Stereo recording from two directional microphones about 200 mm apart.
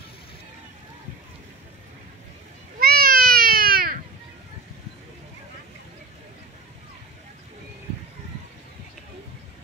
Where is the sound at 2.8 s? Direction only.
50° right (ahead or behind).